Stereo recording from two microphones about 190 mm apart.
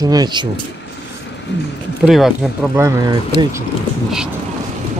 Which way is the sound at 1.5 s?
65° left (ahead or behind).